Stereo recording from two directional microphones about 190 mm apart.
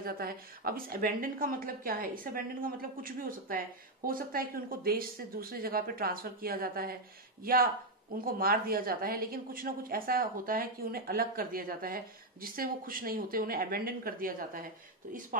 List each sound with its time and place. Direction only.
0.0 s a woman's voice: 50° right (ahead or behind)